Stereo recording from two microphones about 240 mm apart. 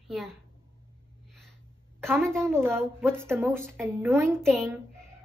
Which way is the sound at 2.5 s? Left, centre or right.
Centre.